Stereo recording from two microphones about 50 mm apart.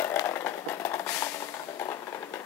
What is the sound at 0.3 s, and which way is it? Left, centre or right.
Vehicle, left.